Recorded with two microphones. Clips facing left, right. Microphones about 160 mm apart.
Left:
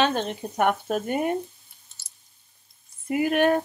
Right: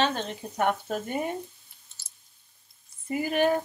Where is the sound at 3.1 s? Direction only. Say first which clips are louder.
Left 4 dB; 70° left (ahead or behind).